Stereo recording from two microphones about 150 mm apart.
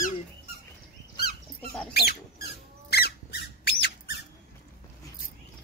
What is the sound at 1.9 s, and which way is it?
Squeak, 90° left.